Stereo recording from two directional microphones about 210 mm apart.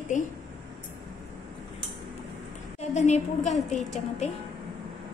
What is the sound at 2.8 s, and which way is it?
Speech, 30° left (ahead or behind).